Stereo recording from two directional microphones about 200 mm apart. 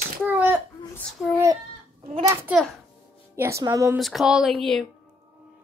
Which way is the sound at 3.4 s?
15° right (ahead or behind).